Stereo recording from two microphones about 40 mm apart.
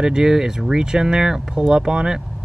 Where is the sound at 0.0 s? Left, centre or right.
Centre.